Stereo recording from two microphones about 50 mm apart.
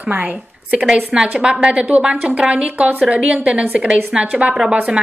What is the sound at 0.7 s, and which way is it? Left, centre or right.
A woman's voice, centre.